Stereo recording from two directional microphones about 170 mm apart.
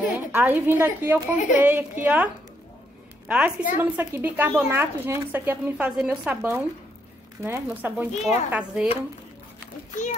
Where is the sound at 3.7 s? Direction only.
10° right (ahead or behind).